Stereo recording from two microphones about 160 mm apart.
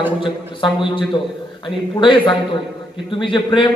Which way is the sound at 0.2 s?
30° left (ahead or behind).